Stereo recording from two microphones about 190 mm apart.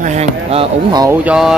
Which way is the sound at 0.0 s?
35° right (ahead or behind).